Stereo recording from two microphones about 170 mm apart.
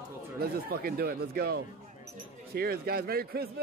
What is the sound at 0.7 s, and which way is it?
A man's voice, 60° right (ahead or behind).